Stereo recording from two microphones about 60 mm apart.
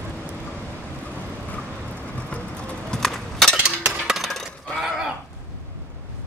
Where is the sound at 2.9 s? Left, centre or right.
Centre.